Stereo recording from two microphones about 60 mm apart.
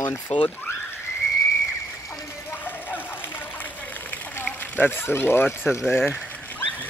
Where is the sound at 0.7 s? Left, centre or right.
Left.